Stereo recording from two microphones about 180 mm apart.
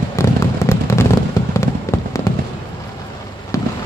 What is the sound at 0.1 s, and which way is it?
Fireworks, 15° left (ahead or behind).